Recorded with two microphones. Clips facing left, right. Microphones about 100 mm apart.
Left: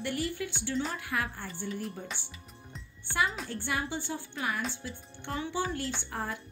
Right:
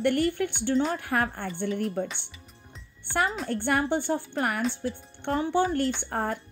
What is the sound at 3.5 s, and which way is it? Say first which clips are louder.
A woman's voice: right 9 dB; 55° right (ahead or behind).